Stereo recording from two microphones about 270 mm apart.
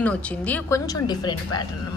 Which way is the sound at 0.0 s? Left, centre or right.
Centre.